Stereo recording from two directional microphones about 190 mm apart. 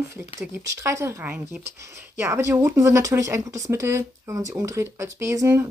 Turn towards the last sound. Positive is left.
turn(degrees=-15)  # may be behind; listen again after turning